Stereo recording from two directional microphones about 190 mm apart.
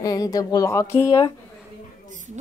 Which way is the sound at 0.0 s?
20° left (ahead or behind).